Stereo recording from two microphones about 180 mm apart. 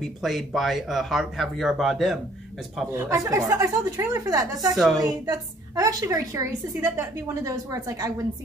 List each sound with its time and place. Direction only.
0.0 s speech: centre (ahead or behind)
2.9 s a woman's voice: 15° right (ahead or behind)
4.7 s speech: centre (ahead or behind)
5.0 s a woman's voice: 20° right (ahead or behind)